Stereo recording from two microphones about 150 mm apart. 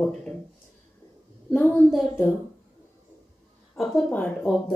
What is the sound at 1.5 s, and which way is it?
Speech, 10° left (ahead or behind).